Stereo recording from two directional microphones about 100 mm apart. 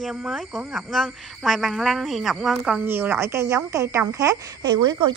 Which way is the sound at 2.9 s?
25° right (ahead or behind).